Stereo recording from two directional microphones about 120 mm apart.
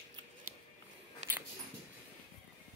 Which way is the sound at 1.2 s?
70° right (ahead or behind).